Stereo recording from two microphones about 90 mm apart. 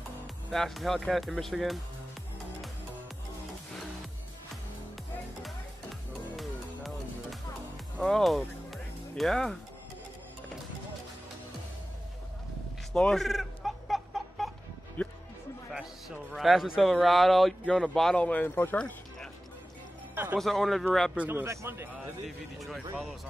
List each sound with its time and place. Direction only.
0.5 s speech: centre (ahead or behind)
5.4 s music: centre (ahead or behind)
12.9 s chicken: 5° left (ahead or behind)
15.0 s music: 15° left (ahead or behind)
15.7 s speech: centre (ahead or behind)
18.2 s speech: 15° left (ahead or behind)
20.3 s speech: centre (ahead or behind)
21.3 s a man's voice: 25° right (ahead or behind)
22.2 s speech: centre (ahead or behind)